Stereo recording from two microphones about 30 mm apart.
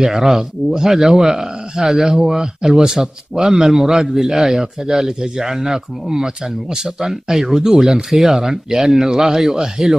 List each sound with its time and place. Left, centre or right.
0.0 s speech: centre
4.2 s speech: centre
8.4 s speech: centre
9.8 s speech: right